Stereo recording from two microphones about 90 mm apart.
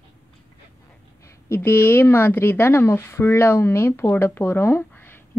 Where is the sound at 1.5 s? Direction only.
25° left (ahead or behind).